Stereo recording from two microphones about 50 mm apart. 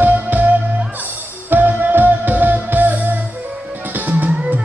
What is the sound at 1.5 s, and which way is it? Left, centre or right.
Music, right.